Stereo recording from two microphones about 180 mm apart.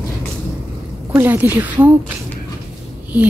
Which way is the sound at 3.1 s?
5° right (ahead or behind).